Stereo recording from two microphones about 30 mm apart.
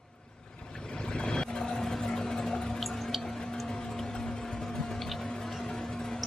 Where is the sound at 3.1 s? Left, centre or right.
Centre.